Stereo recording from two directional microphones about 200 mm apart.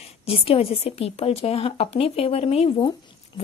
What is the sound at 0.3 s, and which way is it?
A woman's voice, 30° left (ahead or behind).